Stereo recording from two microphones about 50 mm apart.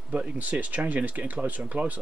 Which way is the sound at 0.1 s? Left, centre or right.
Right.